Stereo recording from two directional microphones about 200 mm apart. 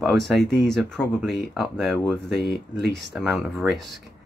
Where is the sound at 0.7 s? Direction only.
5° left (ahead or behind).